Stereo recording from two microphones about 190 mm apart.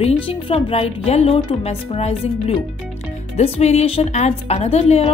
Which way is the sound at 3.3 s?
35° left (ahead or behind).